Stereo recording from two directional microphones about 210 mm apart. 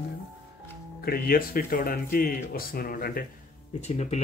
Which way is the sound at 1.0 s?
45° left (ahead or behind).